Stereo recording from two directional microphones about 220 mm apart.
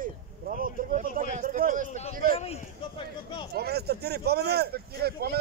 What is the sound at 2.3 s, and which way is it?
Speech, 25° left (ahead or behind).